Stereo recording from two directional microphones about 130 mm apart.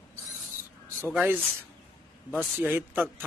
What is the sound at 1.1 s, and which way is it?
Speech, 15° right (ahead or behind).